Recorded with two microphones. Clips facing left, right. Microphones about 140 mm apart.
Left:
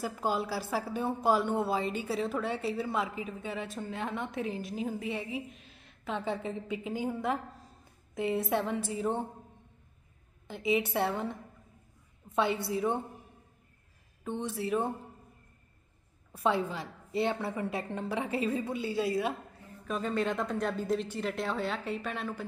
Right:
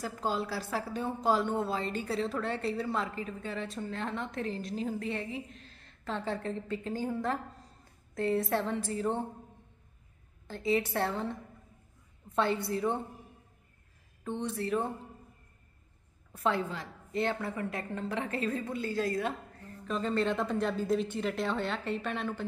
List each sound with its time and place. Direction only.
0.0 s a woman's voice: 10° left (ahead or behind)
8.5 s a woman's voice: 15° left (ahead or behind)
10.4 s a woman's voice: 15° left (ahead or behind)
12.6 s a woman's voice: 15° left (ahead or behind)
14.3 s a woman's voice: 10° left (ahead or behind)
16.4 s a woman's voice: 15° left (ahead or behind)